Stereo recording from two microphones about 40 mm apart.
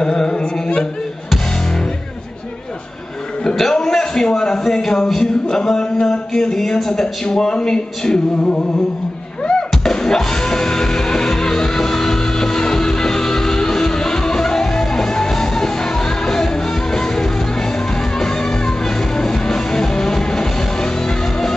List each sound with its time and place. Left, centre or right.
0.0 s music: centre
3.5 s speech: centre
9.4 s music: centre